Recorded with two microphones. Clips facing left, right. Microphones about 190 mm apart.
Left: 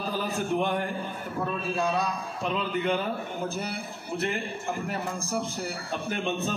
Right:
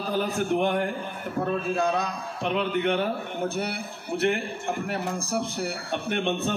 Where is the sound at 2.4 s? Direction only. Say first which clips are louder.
Right 3 dB; 70° right (ahead or behind).